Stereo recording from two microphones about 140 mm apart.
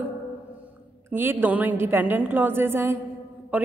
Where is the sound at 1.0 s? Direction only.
15° right (ahead or behind).